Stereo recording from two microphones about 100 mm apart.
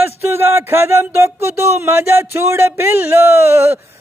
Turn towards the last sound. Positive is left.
turn(degrees=-25)  # may be behind; listen again after turning